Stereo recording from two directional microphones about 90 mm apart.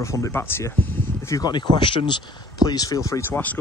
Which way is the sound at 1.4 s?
55° left (ahead or behind).